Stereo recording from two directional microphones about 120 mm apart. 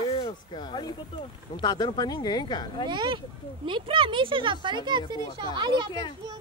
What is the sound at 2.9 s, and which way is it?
Speech, 40° right (ahead or behind).